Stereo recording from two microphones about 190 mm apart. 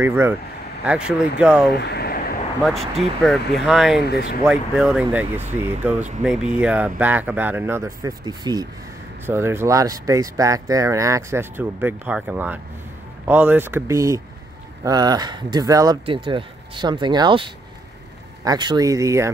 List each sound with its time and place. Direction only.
0.0 s speech: 10° right (ahead or behind)
1.7 s a sound: 60° left (ahead or behind)
2.6 s speech: centre (ahead or behind)
4.0 s speech: 55° left (ahead or behind)
4.5 s speech: 5° right (ahead or behind)